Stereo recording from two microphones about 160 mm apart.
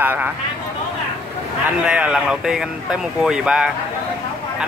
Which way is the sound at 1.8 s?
5° right (ahead or behind).